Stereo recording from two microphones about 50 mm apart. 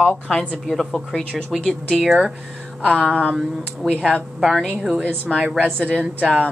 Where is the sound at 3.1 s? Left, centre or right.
Left.